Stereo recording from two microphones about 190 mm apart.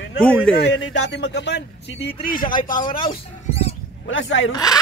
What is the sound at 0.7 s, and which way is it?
Speech, 75° left (ahead or behind).